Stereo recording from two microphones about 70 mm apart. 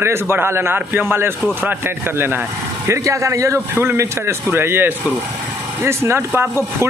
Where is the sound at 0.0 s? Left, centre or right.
Right.